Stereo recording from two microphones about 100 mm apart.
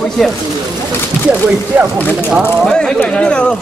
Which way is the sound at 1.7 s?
10° right (ahead or behind).